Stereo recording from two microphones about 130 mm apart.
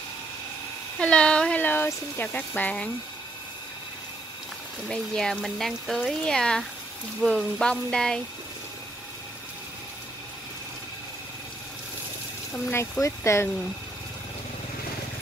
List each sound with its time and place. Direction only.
0.9 s speech: 10° left (ahead or behind)
4.8 s speech: 5° left (ahead or behind)
13.0 s speech: 20° left (ahead or behind)